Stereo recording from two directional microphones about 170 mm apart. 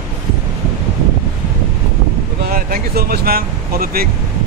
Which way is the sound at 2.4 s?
60° right (ahead or behind).